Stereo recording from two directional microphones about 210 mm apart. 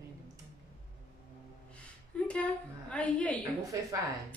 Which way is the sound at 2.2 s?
5° left (ahead or behind).